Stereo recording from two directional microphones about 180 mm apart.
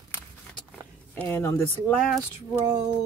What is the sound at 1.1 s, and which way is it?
Speech, 10° left (ahead or behind).